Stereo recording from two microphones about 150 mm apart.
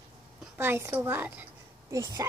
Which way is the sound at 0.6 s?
15° right (ahead or behind).